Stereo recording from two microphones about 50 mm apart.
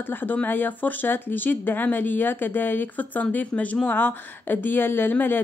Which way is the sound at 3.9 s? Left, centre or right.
Left.